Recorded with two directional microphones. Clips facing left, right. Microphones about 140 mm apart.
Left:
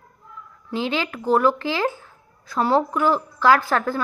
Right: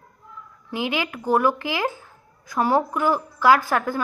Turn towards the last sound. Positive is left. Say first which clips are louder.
# even
turn(degrees=-15)  # may be behind; listen again after turning